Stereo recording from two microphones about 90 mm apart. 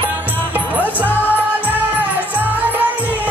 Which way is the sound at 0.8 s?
20° left (ahead or behind).